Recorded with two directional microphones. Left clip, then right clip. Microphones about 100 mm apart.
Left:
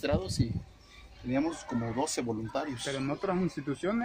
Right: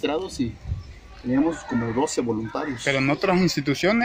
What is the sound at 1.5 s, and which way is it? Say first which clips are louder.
Speech: right 9 dB; 10° right (ahead or behind).